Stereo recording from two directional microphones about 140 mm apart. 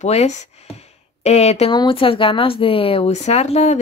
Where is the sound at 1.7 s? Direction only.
35° left (ahead or behind).